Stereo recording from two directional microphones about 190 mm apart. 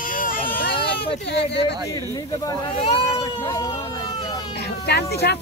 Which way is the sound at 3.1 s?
15° left (ahead or behind).